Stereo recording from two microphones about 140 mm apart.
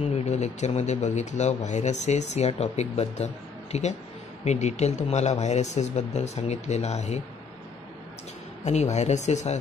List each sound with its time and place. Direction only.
0.0 s speech: 50° left (ahead or behind)
8.6 s speech: 55° left (ahead or behind)